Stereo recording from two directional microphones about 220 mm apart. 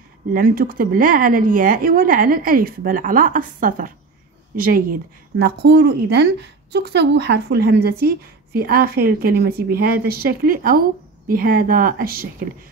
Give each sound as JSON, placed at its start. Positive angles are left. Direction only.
{"t": 0.3, "sound": "a woman's voice", "side_deg": -40}